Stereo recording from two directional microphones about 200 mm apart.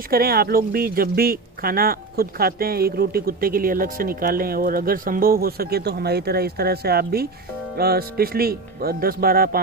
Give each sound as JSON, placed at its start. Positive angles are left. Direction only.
{"t": 0.1, "sound": "speech", "side_deg": -50}